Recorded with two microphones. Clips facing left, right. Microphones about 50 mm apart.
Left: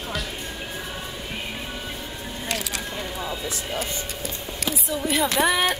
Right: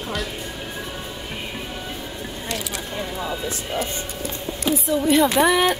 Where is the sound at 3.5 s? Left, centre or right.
Right.